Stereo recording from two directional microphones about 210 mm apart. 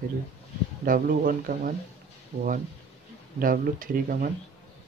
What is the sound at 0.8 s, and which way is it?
Speech, 40° right (ahead or behind).